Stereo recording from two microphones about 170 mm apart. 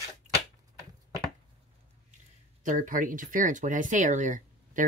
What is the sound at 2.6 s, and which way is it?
Speech, 50° right (ahead or behind).